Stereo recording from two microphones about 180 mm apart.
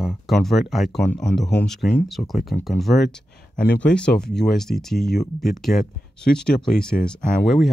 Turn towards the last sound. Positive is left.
turn(degrees=0)  # may be behind; listen again after turning